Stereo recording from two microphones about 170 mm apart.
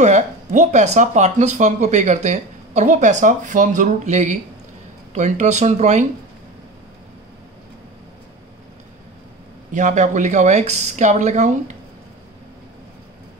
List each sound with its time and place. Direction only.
0.0 s speech: 45° right (ahead or behind)
9.7 s speech: 45° right (ahead or behind)